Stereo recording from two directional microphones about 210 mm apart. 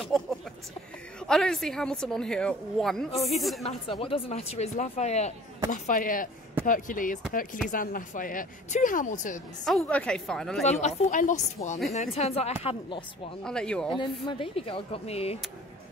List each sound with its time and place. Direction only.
0.0 s a woman's voice: centre (ahead or behind)
4.0 s speech: 30° left (ahead or behind)
9.7 s a woman's voice: 5° left (ahead or behind)
10.6 s speech: 35° left (ahead or behind)
13.4 s a woman's voice: 5° left (ahead or behind)
13.9 s speech: 25° left (ahead or behind)